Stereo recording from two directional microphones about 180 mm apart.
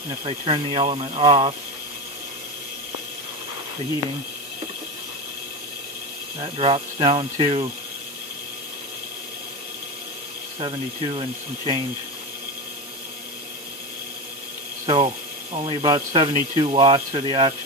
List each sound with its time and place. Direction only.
0.2 s speech: 30° right (ahead or behind)
6.4 s speech: 30° right (ahead or behind)
10.6 s speech: 30° right (ahead or behind)
14.9 s speech: 30° right (ahead or behind)